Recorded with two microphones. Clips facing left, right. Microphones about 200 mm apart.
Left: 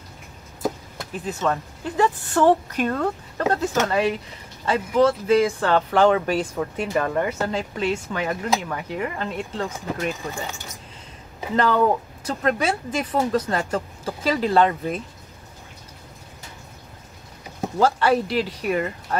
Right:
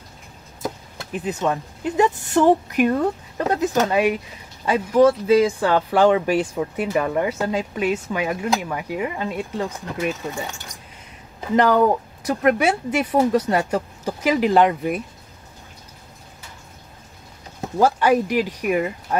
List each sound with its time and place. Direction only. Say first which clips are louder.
1.2 s speech: right 1 dB; 15° right (ahead or behind)
11.5 s speech: right 3 dB; 15° right (ahead or behind)
17.7 s speech: right 2 dB; 15° right (ahead or behind)